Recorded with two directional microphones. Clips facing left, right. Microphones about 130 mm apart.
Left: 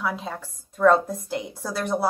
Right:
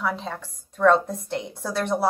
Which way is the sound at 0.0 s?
5° left (ahead or behind).